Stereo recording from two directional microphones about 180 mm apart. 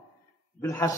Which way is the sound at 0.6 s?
15° left (ahead or behind).